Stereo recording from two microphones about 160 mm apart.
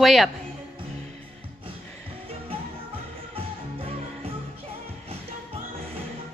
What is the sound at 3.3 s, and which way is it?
Music, 35° right (ahead or behind).